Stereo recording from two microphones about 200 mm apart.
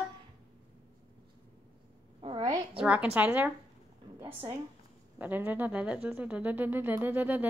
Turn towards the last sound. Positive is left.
turn(degrees=-10)  # may be behind; listen again after turning